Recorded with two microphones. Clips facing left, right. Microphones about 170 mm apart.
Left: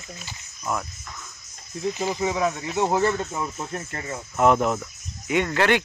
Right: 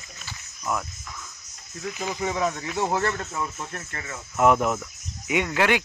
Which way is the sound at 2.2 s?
10° left (ahead or behind).